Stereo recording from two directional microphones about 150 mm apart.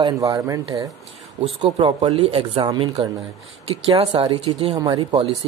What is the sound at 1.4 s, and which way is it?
Speech, 35° right (ahead or behind).